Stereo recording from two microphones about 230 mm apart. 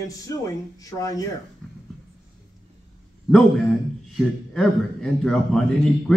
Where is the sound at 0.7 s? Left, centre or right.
Centre.